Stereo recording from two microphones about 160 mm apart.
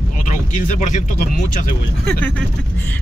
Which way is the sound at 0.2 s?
50° left (ahead or behind).